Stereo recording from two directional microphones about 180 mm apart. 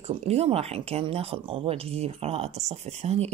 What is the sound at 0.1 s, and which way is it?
Speech, 35° right (ahead or behind).